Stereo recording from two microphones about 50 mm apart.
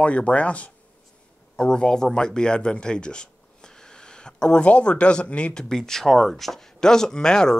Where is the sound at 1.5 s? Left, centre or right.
Centre.